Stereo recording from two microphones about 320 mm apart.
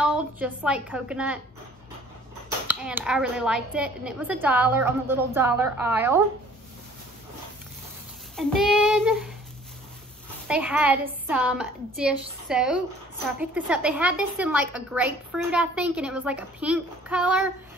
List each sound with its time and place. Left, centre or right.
0.0 s a woman's voice: centre
2.7 s a woman's voice: centre
8.4 s a woman's voice: centre
10.5 s a woman's voice: centre